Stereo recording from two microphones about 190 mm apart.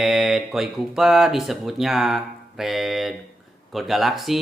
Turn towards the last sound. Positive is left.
turn(degrees=0)  # may be behind; listen again after turning